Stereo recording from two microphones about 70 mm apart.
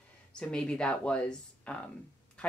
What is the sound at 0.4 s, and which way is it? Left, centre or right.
Speech, centre.